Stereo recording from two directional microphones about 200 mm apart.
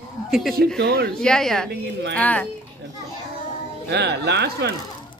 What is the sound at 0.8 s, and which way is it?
Speech, 55° right (ahead or behind).